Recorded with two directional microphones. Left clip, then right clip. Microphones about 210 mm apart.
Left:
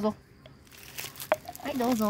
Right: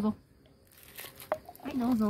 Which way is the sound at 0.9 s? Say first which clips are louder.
Left 6 dB; 25° left (ahead or behind).